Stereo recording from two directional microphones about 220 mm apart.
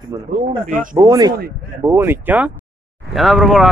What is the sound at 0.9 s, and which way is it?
Speech, 15° right (ahead or behind).